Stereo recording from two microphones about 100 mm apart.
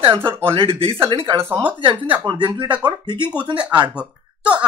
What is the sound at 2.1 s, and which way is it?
Speech, 50° right (ahead or behind).